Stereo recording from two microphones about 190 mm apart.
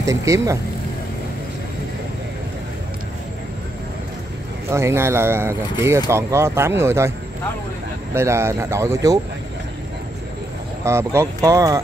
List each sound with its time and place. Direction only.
0.0 s speech: 15° right (ahead or behind)
4.6 s speech: 15° right (ahead or behind)
8.1 s speech: 15° right (ahead or behind)
10.8 s speech: 15° right (ahead or behind)